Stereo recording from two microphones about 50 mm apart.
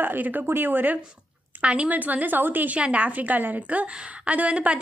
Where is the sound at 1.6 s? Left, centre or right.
Right.